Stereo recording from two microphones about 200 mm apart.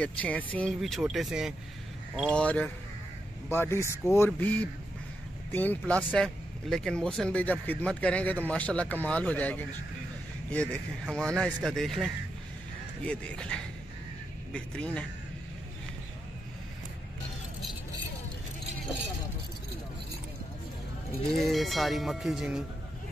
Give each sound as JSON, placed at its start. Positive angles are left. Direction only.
{"t": 0.0, "sound": "speech", "side_deg": 5}
{"t": 21.3, "sound": "speech", "side_deg": 0}